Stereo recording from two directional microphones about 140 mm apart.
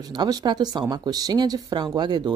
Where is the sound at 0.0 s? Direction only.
30° right (ahead or behind).